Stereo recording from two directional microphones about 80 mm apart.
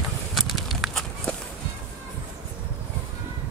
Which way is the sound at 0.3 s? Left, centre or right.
Centre.